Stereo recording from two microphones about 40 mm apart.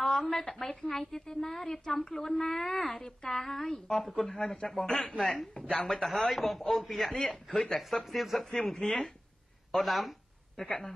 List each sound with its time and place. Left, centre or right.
0.0 s a woman's voice: centre
6.0 s speech: centre
6.6 s a woman's voice: centre
6.9 s speech: centre
7.2 s a woman's voice: centre
8.1 s speech: centre
8.7 s a woman's voice: centre
9.7 s speech: centre
10.6 s a woman's voice: centre